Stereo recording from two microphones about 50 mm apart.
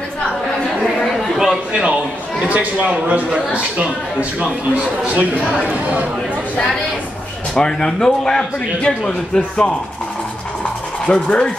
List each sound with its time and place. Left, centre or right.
1.2 s a sound: centre
1.7 s a man's voice: centre
7.5 s a man's voice: centre
11.1 s rub: left